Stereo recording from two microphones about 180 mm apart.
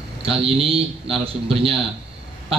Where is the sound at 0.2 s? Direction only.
30° right (ahead or behind).